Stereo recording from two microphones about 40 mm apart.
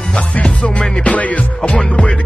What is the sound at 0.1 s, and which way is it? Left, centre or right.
Music, left.